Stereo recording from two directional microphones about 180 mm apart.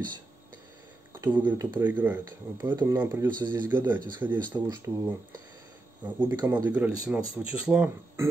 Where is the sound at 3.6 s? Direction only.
10° right (ahead or behind).